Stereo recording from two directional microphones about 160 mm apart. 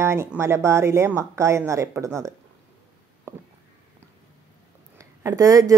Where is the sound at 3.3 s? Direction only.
15° right (ahead or behind).